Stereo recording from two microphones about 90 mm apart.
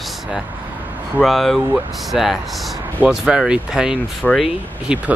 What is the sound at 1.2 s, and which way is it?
Speech, centre (ahead or behind).